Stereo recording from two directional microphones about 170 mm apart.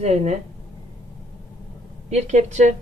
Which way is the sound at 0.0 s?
40° right (ahead or behind).